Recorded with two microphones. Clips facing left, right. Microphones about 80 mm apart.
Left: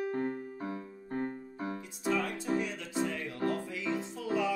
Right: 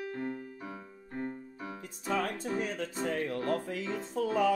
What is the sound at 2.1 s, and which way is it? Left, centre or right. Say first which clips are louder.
Music: left 1 dB; right.